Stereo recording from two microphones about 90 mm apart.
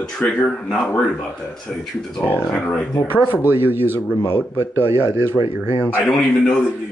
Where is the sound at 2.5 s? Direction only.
10° left (ahead or behind).